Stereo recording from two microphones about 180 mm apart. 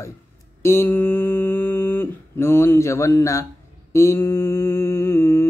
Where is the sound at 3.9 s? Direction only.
15° left (ahead or behind).